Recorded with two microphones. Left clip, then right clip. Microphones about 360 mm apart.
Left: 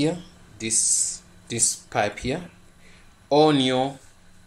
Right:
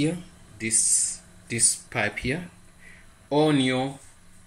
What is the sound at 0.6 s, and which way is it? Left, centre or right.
Speech, centre.